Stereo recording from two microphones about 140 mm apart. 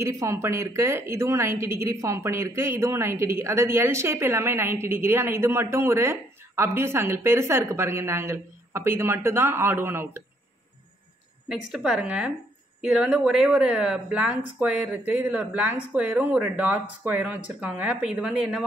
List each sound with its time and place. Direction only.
0.0 s a woman's voice: 20° right (ahead or behind)
11.4 s a woman's voice: 5° right (ahead or behind)